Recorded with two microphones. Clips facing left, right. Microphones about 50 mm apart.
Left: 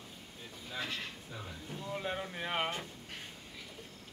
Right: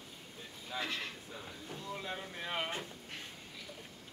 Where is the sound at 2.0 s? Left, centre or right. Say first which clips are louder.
Left 4 dB; left.